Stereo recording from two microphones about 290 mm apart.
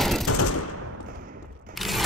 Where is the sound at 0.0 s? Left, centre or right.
Centre.